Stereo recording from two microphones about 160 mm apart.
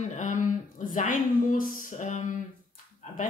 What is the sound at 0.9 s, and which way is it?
A woman's voice, 55° left (ahead or behind).